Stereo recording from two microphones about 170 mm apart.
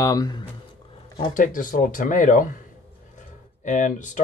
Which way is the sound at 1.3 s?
50° left (ahead or behind).